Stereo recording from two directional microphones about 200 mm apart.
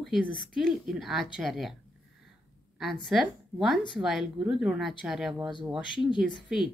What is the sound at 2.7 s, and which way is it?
A woman's voice, centre (ahead or behind).